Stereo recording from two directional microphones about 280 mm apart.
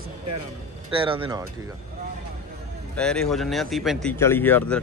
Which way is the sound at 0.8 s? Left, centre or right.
Centre.